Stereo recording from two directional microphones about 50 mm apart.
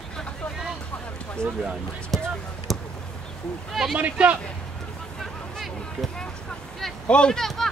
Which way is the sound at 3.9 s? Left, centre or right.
Right.